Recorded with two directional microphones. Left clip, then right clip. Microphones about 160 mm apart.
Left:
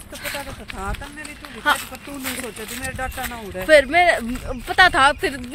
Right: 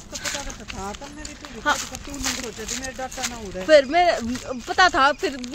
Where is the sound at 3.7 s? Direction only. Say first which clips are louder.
Left 2 dB; 10° right (ahead or behind).